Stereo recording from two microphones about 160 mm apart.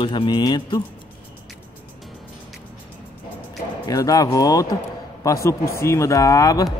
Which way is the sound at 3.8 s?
20° left (ahead or behind).